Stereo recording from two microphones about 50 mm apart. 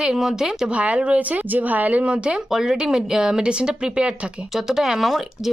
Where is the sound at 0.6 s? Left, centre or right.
Right.